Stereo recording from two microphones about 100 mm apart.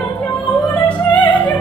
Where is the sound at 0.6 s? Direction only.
15° left (ahead or behind).